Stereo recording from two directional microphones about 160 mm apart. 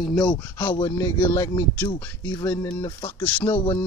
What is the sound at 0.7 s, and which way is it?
Speech, 20° left (ahead or behind).